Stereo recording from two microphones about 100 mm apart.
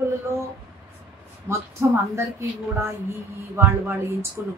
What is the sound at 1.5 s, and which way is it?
Speech, 25° right (ahead or behind).